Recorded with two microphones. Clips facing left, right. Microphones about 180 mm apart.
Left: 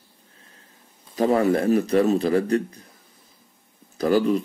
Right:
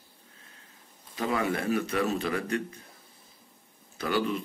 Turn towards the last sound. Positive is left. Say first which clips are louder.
# left 9 dB
turn(degrees=35)  # may be behind; listen again after turning